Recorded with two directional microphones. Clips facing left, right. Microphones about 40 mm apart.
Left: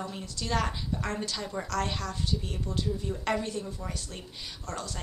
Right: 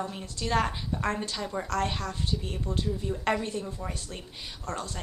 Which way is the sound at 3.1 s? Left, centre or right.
Centre.